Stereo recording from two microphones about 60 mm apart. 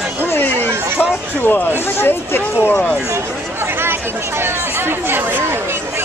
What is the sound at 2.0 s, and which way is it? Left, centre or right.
Speech, left.